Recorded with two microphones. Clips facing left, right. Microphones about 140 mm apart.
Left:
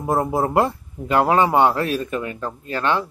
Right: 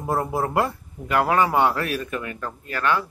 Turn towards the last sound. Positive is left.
turn(degrees=25)  # may be behind; listen again after turning